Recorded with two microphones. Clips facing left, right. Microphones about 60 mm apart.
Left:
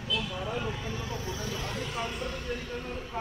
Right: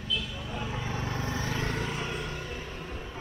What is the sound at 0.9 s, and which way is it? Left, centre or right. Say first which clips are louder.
Vehicle: right 2 dB; right.